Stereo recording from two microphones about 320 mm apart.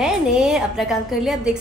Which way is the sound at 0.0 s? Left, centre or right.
Centre.